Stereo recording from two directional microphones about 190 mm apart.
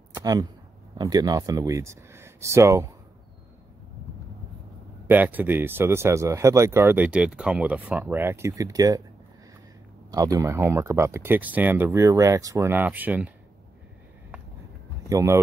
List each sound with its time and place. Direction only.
0.1 s a sound: 20° right (ahead or behind)
0.9 s speech: 20° right (ahead or behind)
5.0 s speech: 10° right (ahead or behind)
10.1 s speech: 20° right (ahead or behind)
15.0 s speech: 15° right (ahead or behind)